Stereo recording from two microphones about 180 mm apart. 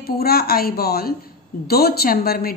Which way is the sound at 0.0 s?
60° left (ahead or behind).